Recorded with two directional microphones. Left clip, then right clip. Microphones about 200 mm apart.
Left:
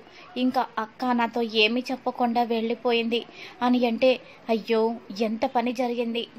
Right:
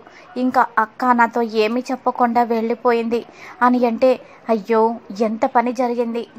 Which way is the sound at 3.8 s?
15° right (ahead or behind).